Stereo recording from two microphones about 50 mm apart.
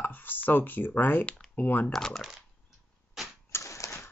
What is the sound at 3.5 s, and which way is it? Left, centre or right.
Typewriter, left.